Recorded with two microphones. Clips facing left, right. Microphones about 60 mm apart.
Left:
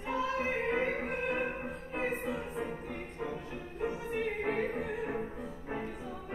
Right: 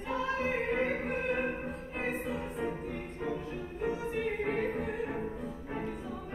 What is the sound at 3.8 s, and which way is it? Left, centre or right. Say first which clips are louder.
Music: right 1 dB; centre.